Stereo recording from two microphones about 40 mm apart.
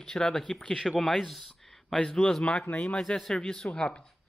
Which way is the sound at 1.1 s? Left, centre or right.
Centre.